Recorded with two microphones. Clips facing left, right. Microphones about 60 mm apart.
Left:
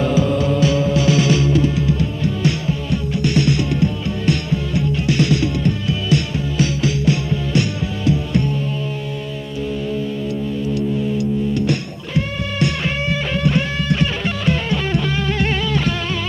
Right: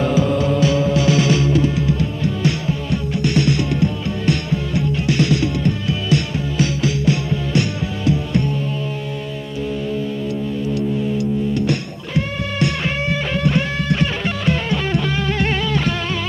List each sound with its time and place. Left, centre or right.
0.0 s music: right
0.9 s music: right
2.4 s music: right
5.0 s music: right
12.5 s music: right